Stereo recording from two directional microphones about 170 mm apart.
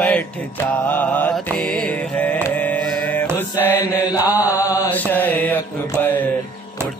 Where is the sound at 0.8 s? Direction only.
10° left (ahead or behind).